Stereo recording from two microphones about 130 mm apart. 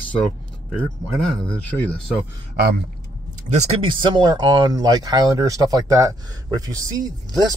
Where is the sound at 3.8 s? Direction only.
40° right (ahead or behind).